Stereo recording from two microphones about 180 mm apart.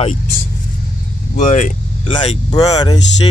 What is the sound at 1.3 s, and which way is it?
Speech, 40° left (ahead or behind).